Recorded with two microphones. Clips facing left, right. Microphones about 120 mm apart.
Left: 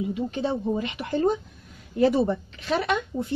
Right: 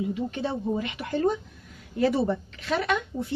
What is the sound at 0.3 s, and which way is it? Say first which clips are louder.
Speech: left 2 dB; 20° left (ahead or behind).